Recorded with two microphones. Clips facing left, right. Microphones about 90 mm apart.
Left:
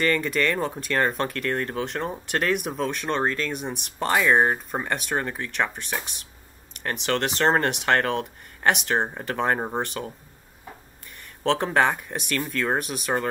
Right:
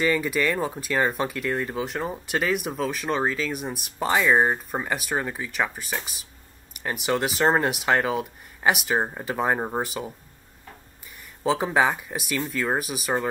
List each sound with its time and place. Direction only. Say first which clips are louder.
0.0 s speech: even; 5° right (ahead or behind)
11.4 s speech: even; 5° right (ahead or behind)